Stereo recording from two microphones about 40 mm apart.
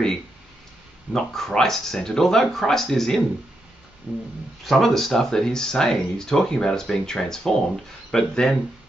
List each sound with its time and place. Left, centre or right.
1.1 s speech: centre
4.1 s speech: right
4.6 s speech: centre